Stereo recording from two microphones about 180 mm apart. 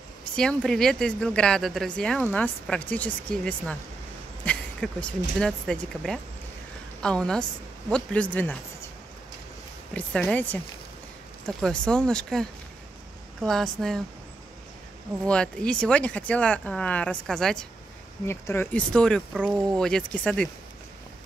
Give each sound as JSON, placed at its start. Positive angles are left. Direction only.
{"t": 0.4, "sound": "a woman's voice", "side_deg": 5}
{"t": 4.5, "sound": "a sound", "side_deg": 5}
{"t": 5.4, "sound": "a woman's voice", "side_deg": 5}
{"t": 9.9, "sound": "a woman's voice", "side_deg": 5}
{"t": 15.2, "sound": "speech", "side_deg": 5}
{"t": 18.2, "sound": "a woman's voice", "side_deg": 15}